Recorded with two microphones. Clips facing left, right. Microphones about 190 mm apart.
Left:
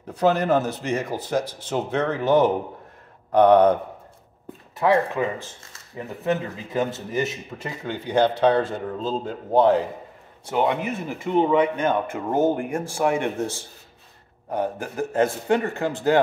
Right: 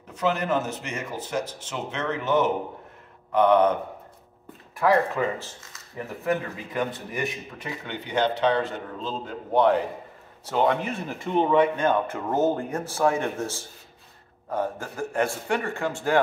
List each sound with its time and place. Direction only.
0.1 s a man's voice: 35° left (ahead or behind)
4.7 s a man's voice: 20° left (ahead or behind)
10.5 s speech: 15° left (ahead or behind)
14.5 s speech: 15° left (ahead or behind)